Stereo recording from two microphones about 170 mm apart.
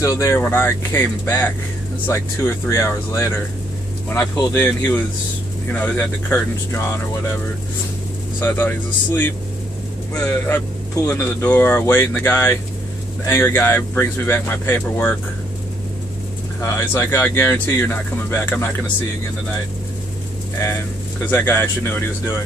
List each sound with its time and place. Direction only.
0.0 s speech: 15° left (ahead or behind)
8.4 s speech: 10° left (ahead or behind)
16.6 s speech: 15° left (ahead or behind)
21.3 s speech: 10° left (ahead or behind)